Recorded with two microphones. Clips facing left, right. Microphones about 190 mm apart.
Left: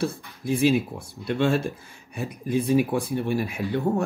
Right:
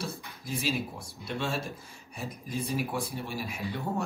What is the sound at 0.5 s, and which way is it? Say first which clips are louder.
Speech: left 11 dB; 55° left (ahead or behind).